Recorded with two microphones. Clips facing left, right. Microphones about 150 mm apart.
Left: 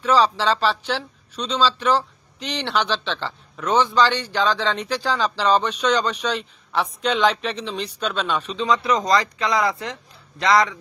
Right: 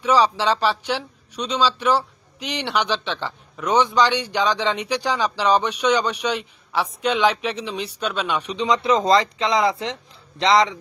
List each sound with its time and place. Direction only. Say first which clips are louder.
0.0 s a man's voice: even; 10° right (ahead or behind)